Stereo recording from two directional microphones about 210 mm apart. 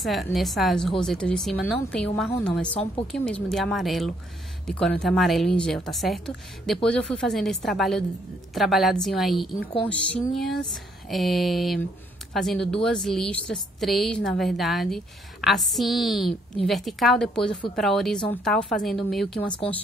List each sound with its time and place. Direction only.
0.0 s a woman's voice: centre (ahead or behind)
2.6 s a woman's voice: 25° left (ahead or behind)
3.1 s a woman's voice: 5° left (ahead or behind)